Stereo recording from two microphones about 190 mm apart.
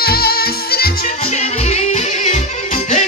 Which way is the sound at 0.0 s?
55° left (ahead or behind).